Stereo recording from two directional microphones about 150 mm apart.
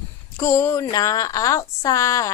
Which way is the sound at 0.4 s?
20° left (ahead or behind).